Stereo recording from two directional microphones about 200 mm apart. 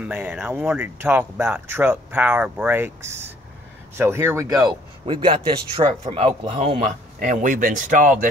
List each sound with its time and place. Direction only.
0.0 s speech: 10° right (ahead or behind)
4.6 s speech: 25° right (ahead or behind)